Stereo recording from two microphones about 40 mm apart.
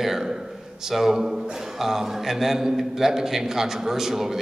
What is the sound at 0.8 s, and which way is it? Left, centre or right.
A man's voice, centre.